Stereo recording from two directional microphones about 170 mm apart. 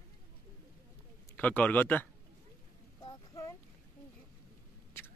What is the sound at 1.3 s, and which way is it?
Speech, 10° left (ahead or behind).